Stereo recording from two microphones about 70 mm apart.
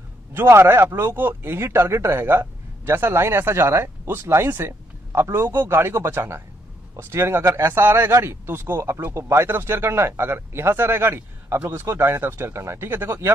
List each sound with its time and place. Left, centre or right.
0.3 s speech: right